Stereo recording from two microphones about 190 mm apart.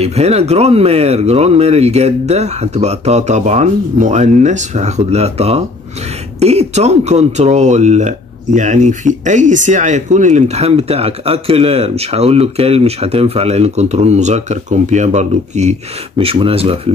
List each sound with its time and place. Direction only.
0.0 s speech: 35° right (ahead or behind)